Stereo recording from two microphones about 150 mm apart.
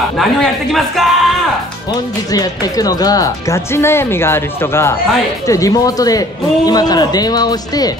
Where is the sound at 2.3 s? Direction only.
25° left (ahead or behind).